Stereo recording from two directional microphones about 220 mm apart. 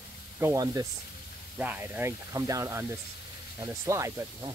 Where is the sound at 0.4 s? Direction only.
15° right (ahead or behind).